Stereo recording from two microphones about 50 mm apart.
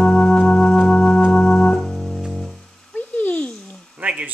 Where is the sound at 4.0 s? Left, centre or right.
Right.